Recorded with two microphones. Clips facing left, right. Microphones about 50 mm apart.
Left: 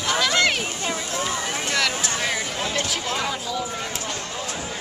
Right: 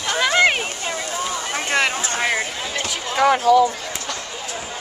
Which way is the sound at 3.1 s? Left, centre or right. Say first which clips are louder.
Right 12 dB; right.